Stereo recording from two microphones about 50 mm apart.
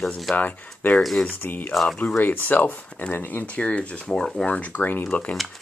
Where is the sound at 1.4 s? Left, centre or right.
Left.